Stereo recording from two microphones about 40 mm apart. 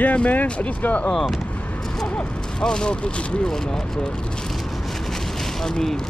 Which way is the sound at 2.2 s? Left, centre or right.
Left.